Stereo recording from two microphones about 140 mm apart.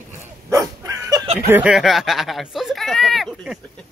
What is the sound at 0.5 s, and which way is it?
Dog, 25° right (ahead or behind).